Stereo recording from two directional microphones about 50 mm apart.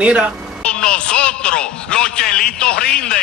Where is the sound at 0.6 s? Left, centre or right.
Centre.